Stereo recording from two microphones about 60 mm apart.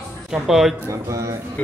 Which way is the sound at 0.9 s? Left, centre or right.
Right.